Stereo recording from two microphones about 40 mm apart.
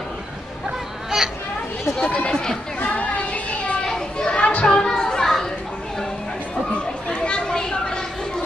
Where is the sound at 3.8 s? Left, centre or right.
Centre.